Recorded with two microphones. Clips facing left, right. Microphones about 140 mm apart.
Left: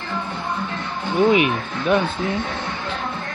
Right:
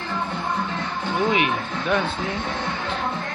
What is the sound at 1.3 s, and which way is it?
Speech, 15° left (ahead or behind).